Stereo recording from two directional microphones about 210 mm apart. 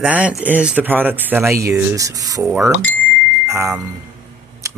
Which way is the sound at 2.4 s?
5° right (ahead or behind).